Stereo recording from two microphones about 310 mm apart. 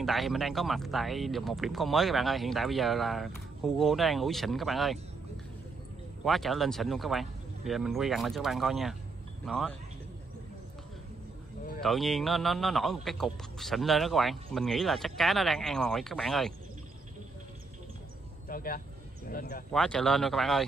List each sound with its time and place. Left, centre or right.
0.0 s speech: centre
6.2 s speech: centre
11.8 s speech: centre
18.5 s speech: left
19.7 s speech: centre